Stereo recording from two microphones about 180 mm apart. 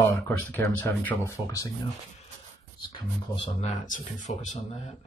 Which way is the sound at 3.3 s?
40° left (ahead or behind).